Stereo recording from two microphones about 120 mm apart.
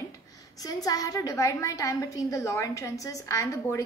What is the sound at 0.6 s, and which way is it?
A woman's voice, 30° left (ahead or behind).